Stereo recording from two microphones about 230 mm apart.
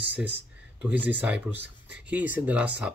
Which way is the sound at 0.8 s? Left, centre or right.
Centre.